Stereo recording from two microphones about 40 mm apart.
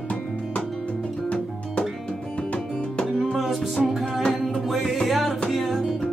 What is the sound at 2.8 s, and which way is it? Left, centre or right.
Music, left.